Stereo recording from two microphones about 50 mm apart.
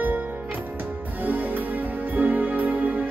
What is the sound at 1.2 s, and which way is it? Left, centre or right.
Music, right.